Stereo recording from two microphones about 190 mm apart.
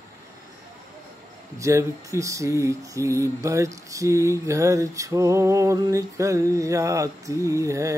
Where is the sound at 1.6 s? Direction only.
15° right (ahead or behind).